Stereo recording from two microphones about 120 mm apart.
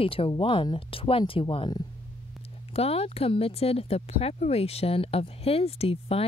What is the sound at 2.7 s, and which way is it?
Speech, 55° left (ahead or behind).